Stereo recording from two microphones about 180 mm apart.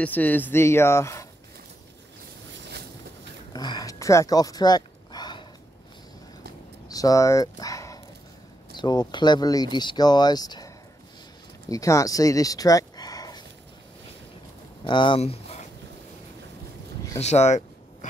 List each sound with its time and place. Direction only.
0.0 s speech: 10° left (ahead or behind)
3.5 s speech: 20° left (ahead or behind)
6.9 s speech: 20° left (ahead or behind)
11.7 s speech: 20° left (ahead or behind)
14.9 s speech: 25° left (ahead or behind)
17.2 s speech: 40° left (ahead or behind)